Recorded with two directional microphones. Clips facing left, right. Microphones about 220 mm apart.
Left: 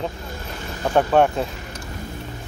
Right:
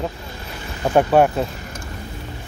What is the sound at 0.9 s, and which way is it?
Speech, 10° right (ahead or behind).